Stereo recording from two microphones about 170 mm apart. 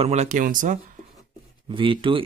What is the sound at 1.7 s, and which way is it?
Speech, 30° right (ahead or behind).